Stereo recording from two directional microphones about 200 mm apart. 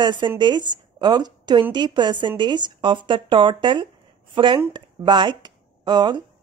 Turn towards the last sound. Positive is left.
turn(degrees=-20)  # may be behind; listen again after turning